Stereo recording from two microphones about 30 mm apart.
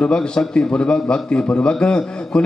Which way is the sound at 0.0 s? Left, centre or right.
Left.